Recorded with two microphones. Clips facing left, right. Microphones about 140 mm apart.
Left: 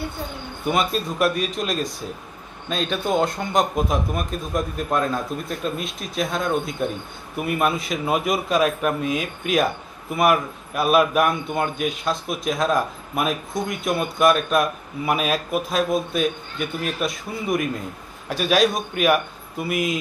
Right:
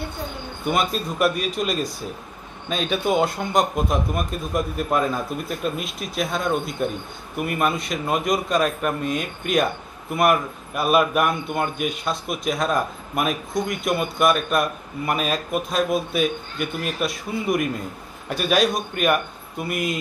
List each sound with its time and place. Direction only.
0.7 s a man's voice: centre (ahead or behind)